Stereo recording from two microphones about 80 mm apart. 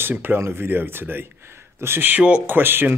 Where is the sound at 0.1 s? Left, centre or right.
Right.